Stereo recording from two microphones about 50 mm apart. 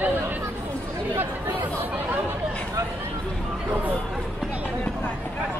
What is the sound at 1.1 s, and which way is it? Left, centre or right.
Chatter, right.